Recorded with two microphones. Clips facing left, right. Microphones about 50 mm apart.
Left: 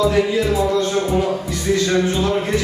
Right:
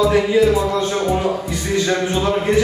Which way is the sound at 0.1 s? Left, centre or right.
Centre.